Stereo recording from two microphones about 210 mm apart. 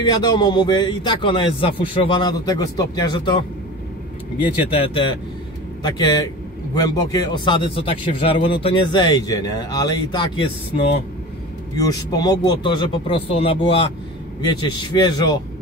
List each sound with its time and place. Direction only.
0.0 s a man's voice: 20° left (ahead or behind)
4.6 s a man's voice: 25° left (ahead or behind)
11.7 s a man's voice: 15° left (ahead or behind)